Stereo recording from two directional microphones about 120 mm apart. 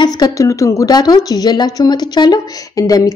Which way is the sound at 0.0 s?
30° left (ahead or behind).